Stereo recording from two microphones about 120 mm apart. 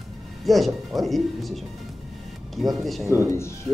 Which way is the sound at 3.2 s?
20° left (ahead or behind).